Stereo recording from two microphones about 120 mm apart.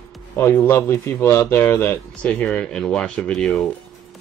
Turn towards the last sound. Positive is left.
turn(degrees=5)  # may be behind; listen again after turning